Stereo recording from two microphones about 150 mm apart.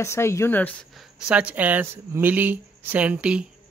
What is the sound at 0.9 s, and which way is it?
Speech, centre (ahead or behind).